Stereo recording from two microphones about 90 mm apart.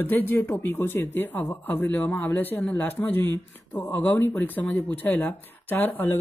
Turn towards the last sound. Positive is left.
turn(degrees=20)  # may be behind; listen again after turning